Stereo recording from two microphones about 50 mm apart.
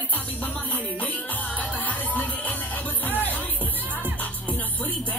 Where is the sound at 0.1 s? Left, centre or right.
Left.